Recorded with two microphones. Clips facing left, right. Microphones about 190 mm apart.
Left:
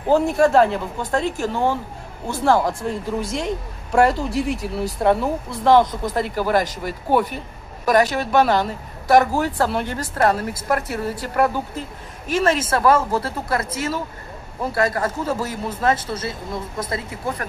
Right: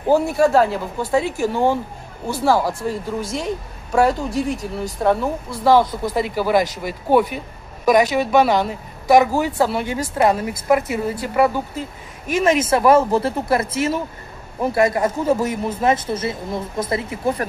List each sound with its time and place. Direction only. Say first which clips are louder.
0.1 s speech: even; 5° right (ahead or behind); by 17.5 s 25° right (ahead or behind)